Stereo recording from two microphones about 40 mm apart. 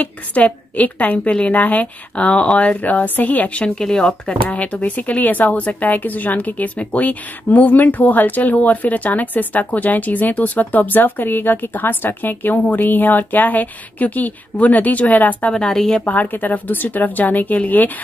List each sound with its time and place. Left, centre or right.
0.0 s a woman's voice: left
3.6 s speech: centre; by 15.5 s left
15.5 s a woman's voice: centre
16.1 s speech: left